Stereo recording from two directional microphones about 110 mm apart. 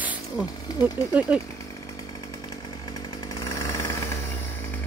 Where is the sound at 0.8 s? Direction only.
15° right (ahead or behind).